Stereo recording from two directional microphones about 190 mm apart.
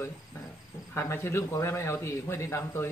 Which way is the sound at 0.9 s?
15° left (ahead or behind).